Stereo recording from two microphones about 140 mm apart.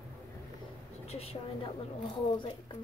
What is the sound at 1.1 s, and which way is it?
Speech, 45° left (ahead or behind).